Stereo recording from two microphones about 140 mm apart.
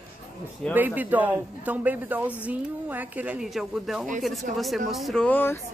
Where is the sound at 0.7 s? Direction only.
15° right (ahead or behind).